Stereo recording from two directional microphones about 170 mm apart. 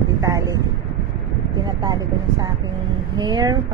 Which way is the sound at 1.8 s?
25° right (ahead or behind).